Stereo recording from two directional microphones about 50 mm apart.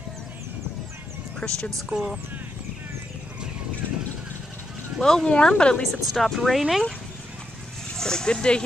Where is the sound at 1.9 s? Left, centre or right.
Right.